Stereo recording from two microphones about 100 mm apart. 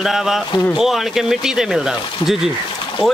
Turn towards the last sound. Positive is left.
turn(degrees=5)  # may be behind; listen again after turning